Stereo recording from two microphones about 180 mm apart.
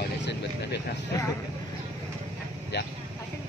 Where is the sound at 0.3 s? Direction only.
70° left (ahead or behind).